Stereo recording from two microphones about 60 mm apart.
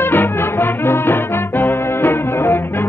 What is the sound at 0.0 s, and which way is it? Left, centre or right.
Music, left.